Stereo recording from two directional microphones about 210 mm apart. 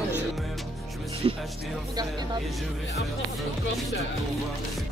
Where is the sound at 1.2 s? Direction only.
20° right (ahead or behind).